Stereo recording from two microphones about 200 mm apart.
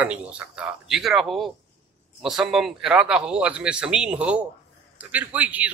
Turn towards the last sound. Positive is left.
turn(degrees=-5)  # may be behind; listen again after turning